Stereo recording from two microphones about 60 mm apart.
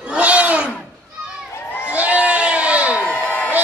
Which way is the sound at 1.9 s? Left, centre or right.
Right.